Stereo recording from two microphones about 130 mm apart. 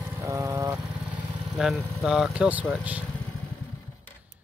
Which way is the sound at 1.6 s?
5° right (ahead or behind).